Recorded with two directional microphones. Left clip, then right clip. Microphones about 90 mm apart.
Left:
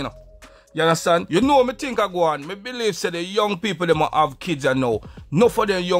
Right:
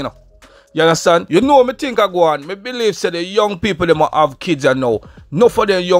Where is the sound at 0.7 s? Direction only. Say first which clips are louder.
Right 6 dB; 35° right (ahead or behind).